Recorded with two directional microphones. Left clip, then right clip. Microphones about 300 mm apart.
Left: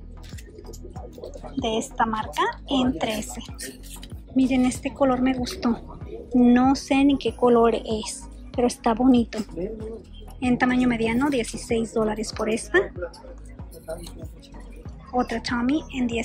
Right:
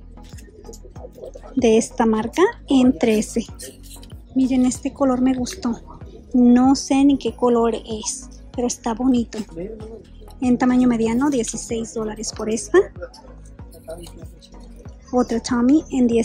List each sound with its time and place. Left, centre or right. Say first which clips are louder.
1.6 s a woman's voice: right 7 dB; centre
10.4 s a woman's voice: right 4 dB; centre
15.2 s a woman's voice: right 6 dB; centre